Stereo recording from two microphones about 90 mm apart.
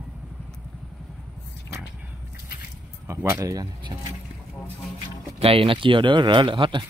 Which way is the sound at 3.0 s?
35° right (ahead or behind).